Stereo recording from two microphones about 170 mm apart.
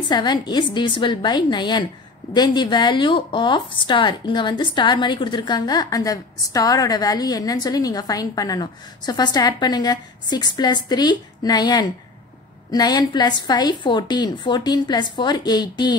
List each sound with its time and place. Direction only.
0.1 s a woman's voice: 25° left (ahead or behind)